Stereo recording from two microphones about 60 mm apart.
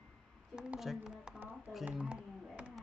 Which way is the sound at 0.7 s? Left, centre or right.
Centre.